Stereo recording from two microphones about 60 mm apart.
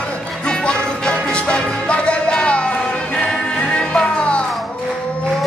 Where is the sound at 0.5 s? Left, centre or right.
Centre.